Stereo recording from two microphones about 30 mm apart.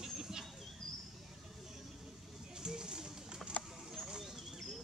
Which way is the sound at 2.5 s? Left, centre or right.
Right.